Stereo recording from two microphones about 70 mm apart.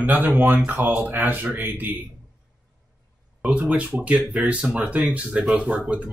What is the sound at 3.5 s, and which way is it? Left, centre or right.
Speech, right.